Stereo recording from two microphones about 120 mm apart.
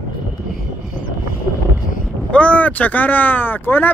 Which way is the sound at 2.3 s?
10° left (ahead or behind).